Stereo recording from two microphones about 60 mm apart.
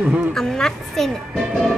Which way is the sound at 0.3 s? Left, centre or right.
Centre.